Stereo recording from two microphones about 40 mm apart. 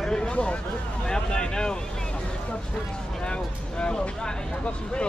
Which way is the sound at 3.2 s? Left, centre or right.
Left.